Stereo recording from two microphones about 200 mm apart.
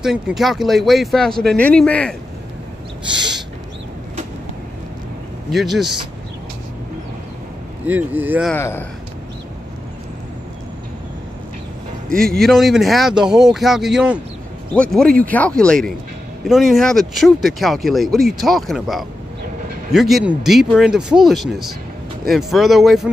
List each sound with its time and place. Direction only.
0.0 s speech: centre (ahead or behind)
3.1 s owl: 20° right (ahead or behind)
5.5 s speech: centre (ahead or behind)
7.8 s speech: 10° right (ahead or behind)
8.5 s speech: 10° left (ahead or behind)
12.4 s speech: centre (ahead or behind)